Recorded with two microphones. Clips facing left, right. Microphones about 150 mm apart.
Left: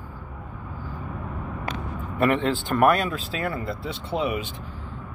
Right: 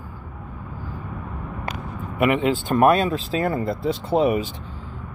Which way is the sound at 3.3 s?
40° right (ahead or behind).